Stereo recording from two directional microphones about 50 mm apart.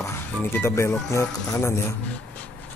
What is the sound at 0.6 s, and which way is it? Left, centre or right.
Speech, left.